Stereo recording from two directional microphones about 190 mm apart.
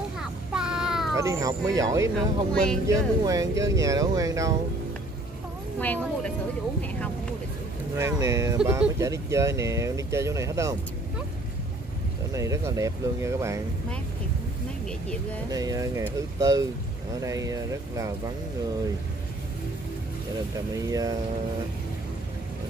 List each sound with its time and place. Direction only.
0.2 s a sound: 5° right (ahead or behind)
1.1 s speech: 15° right (ahead or behind)
2.1 s speech: 5° left (ahead or behind)
2.9 s speech: 15° right (ahead or behind)
5.8 s speech: 10° left (ahead or behind)
8.0 s speech: 15° right (ahead or behind)
12.4 s speech: 15° right (ahead or behind)
15.5 s speech: 20° right (ahead or behind)
20.7 s speech: 20° right (ahead or behind)